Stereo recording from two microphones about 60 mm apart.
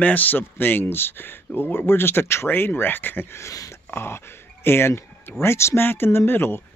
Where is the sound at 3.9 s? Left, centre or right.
Left.